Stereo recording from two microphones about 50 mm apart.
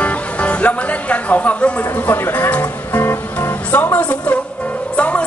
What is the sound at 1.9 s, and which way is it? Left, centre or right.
Music, left.